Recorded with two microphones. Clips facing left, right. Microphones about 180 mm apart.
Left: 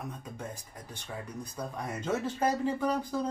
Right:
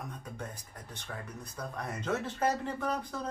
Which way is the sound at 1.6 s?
10° left (ahead or behind).